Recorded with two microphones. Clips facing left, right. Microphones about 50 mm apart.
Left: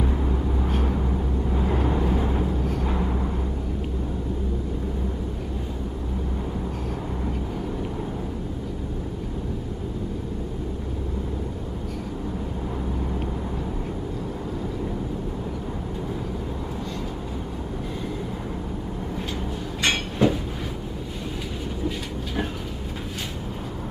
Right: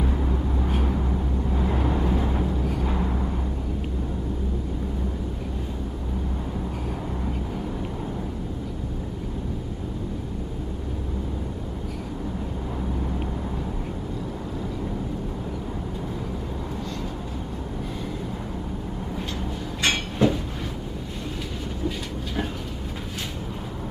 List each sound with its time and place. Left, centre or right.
0.0 s vehicle: centre
19.8 s a sound: centre
21.8 s train: centre